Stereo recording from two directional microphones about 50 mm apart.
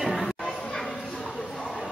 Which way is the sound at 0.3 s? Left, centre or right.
Centre.